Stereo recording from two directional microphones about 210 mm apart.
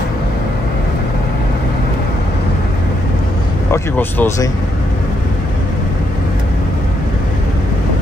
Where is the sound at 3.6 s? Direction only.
15° left (ahead or behind).